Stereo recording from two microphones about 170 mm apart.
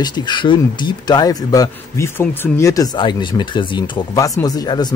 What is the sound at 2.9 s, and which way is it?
Speech, 25° left (ahead or behind).